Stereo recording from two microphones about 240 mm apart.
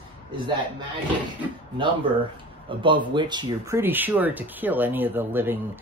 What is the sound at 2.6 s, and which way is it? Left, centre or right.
Speech, centre.